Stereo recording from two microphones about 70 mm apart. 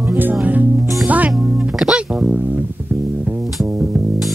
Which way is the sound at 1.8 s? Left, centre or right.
Centre.